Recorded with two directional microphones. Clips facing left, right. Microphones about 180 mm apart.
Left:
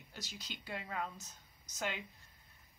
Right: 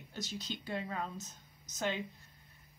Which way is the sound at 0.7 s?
25° right (ahead or behind).